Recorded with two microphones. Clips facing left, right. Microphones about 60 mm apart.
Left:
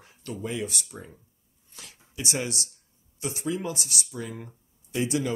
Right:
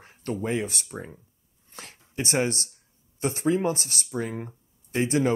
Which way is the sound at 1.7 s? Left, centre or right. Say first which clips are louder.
Right 5 dB; right.